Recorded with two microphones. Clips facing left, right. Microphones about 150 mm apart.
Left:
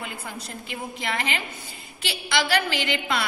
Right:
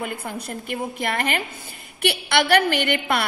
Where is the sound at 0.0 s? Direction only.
55° right (ahead or behind).